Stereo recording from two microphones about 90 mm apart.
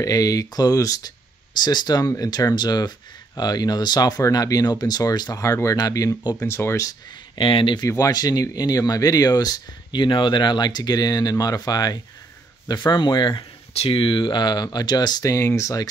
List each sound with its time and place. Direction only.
0.0 s speech: 40° left (ahead or behind)
1.6 s speech: 50° left (ahead or behind)
5.4 s speech: 35° left (ahead or behind)
6.9 s speech: 60° left (ahead or behind)
7.8 s speech: 40° left (ahead or behind)
15.2 s speech: 35° left (ahead or behind)